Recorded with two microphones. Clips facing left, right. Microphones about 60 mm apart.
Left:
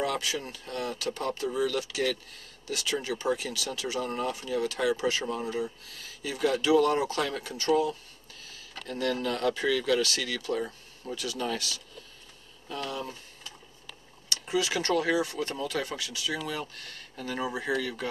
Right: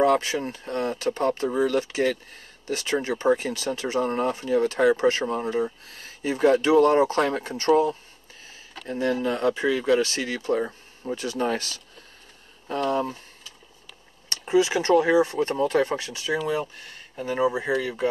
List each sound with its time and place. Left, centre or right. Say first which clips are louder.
0.0 s speech: right 9 dB; right
14.3 s speech: right 8 dB; right